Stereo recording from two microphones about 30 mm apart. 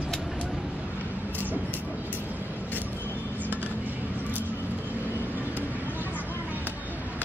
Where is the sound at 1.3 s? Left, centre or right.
Left.